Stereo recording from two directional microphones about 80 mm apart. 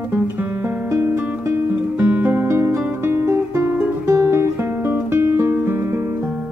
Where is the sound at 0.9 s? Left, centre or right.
Right.